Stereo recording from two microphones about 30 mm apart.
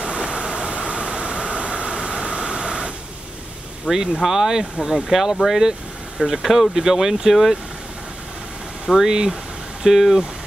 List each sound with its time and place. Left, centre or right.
0.0 s a sound: right
3.9 s speech: right
4.2 s speech: centre
8.9 s speech: centre